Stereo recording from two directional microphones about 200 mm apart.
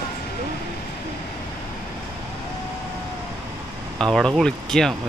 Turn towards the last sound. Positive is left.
turn(degrees=5)  # may be behind; listen again after turning